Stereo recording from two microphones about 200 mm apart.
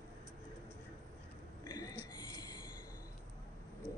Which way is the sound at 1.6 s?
20° left (ahead or behind).